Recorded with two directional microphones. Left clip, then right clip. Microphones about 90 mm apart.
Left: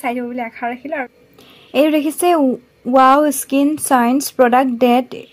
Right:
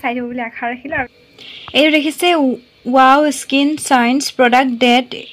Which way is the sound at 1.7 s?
15° left (ahead or behind).